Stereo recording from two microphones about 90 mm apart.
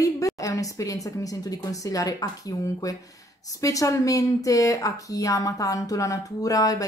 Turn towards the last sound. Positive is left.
turn(degrees=40)  # may be behind; listen again after turning